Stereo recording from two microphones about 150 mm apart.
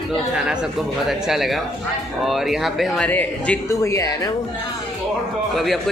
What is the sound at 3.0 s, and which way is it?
Speech, 10° left (ahead or behind).